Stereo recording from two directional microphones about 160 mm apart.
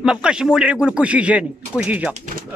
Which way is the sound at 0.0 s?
5° right (ahead or behind).